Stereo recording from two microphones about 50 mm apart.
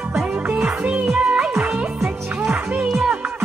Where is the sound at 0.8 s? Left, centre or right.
Right.